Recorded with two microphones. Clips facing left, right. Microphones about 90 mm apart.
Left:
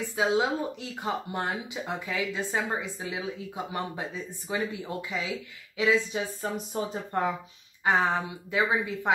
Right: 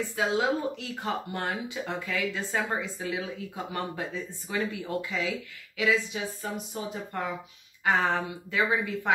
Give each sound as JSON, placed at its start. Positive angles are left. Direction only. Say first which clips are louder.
{"t": 0.1, "sound": "speech", "louder": "left 2 dB", "side_deg": 20}
{"t": 7.8, "sound": "speech", "louder": "left 1 dB", "side_deg": 15}